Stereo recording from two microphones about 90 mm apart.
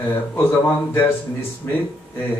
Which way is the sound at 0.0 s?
25° left (ahead or behind).